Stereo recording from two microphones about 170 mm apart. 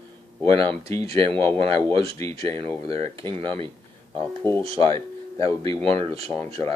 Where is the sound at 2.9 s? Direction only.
35° right (ahead or behind).